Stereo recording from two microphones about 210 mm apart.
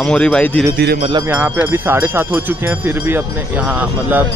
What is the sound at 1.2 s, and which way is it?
Speech, 10° right (ahead or behind).